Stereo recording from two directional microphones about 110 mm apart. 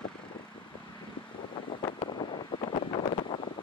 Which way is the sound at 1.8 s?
50° left (ahead or behind).